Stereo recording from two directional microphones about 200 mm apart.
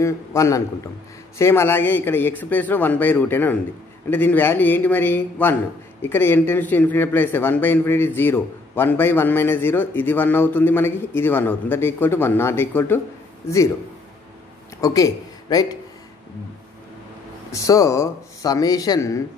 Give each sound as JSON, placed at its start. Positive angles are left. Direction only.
{"t": 0.0, "sound": "a man's voice", "side_deg": 15}
{"t": 14.8, "sound": "a man's voice", "side_deg": 20}
{"t": 17.5, "sound": "a man's voice", "side_deg": 15}